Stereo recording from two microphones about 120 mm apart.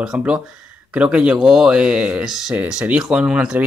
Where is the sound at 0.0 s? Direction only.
5° right (ahead or behind).